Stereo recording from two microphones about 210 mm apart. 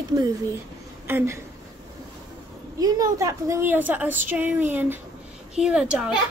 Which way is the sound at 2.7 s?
15° right (ahead or behind).